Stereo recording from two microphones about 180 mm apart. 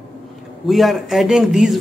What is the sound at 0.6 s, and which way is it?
Speech, centre (ahead or behind).